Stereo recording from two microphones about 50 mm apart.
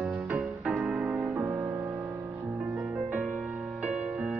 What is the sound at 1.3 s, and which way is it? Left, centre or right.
Music, right.